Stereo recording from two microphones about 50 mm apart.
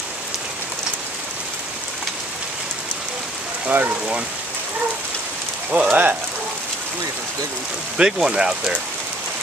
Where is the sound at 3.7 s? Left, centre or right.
Right.